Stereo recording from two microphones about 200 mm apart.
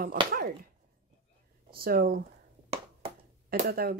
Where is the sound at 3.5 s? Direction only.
50° right (ahead or behind).